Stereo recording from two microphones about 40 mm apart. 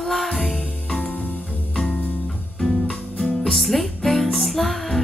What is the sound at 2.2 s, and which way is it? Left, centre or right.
Music, left.